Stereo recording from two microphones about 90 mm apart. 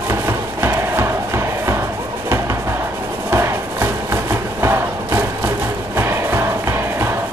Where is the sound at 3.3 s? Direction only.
30° right (ahead or behind).